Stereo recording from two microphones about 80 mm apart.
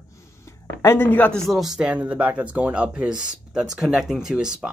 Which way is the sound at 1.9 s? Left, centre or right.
Centre.